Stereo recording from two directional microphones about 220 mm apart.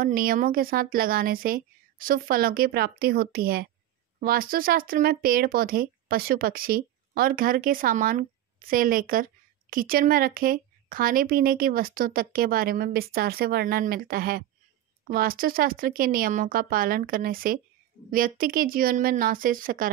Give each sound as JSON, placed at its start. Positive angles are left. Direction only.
{"t": 0.0, "sound": "speech", "side_deg": -40}